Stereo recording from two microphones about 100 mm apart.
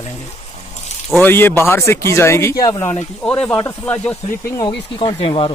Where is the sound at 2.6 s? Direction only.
40° left (ahead or behind).